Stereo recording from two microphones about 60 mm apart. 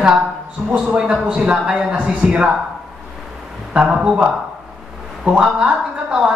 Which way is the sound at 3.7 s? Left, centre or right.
Centre.